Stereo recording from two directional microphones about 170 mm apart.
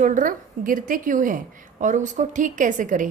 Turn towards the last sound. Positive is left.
turn(degrees=-50)  # may be behind; listen again after turning